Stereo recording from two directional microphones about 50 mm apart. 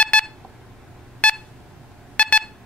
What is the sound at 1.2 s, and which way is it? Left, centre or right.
Pulse, left.